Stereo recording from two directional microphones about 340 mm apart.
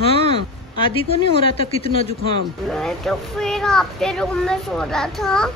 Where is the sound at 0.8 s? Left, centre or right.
Centre.